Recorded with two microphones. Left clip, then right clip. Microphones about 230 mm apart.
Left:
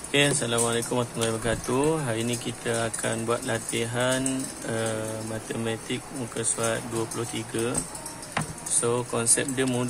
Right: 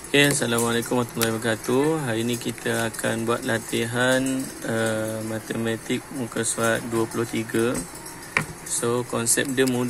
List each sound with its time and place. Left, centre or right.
0.1 s speech: centre
8.8 s speech: centre